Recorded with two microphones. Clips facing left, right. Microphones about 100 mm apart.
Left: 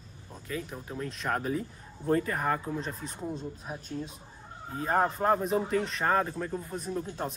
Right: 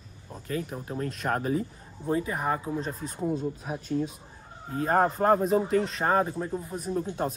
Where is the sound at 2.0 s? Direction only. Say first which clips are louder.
Even; 10° right (ahead or behind).